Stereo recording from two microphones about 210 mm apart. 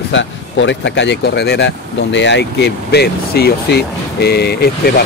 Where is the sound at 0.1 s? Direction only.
60° left (ahead or behind).